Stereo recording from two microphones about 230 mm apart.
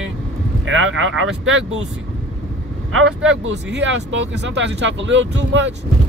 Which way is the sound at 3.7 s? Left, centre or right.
Right.